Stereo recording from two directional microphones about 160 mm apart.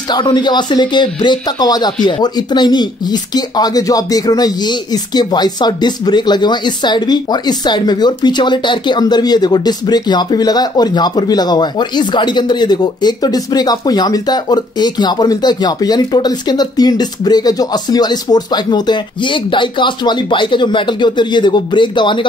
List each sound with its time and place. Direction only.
0.1 s speech: 25° left (ahead or behind)